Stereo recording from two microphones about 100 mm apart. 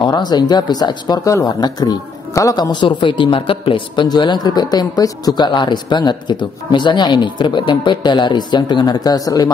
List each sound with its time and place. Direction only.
0.0 s a man's voice: 45° left (ahead or behind)